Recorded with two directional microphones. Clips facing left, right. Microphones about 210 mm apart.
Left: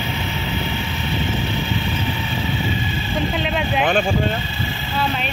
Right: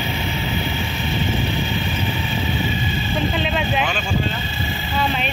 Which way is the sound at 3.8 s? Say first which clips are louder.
Left 5 dB; 55° left (ahead or behind).